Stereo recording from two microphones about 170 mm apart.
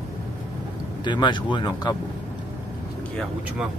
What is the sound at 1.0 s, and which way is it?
Speech, 25° left (ahead or behind).